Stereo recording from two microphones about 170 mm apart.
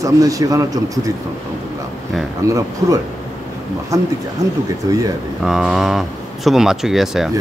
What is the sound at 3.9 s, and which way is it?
A man's voice, 20° right (ahead or behind).